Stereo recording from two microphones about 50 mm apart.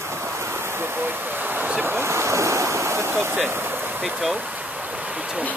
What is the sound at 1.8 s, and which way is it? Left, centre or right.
Waves, right.